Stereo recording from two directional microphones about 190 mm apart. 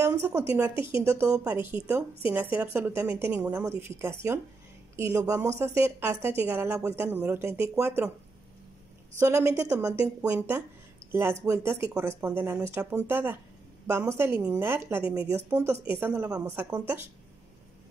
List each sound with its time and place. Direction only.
0.0 s a woman's voice: 15° right (ahead or behind)
9.2 s speech: 15° right (ahead or behind)